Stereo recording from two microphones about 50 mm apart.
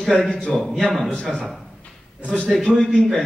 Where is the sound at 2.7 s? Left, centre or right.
Centre.